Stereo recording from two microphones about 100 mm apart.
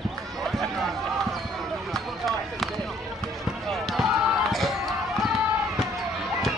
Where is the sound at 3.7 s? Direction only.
Centre (ahead or behind).